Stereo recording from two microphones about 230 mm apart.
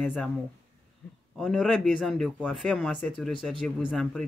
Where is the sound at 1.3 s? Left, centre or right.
Centre.